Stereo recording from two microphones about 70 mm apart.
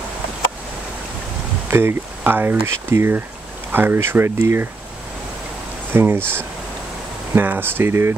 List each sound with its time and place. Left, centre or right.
1.7 s speech: right
5.9 s speech: right